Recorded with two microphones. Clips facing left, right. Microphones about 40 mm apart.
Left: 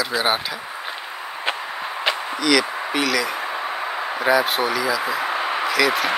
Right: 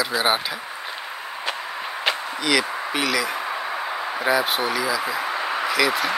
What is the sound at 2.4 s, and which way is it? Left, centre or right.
Speech, centre.